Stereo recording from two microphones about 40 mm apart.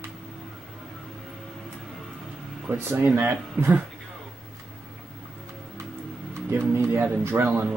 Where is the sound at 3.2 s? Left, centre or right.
Right.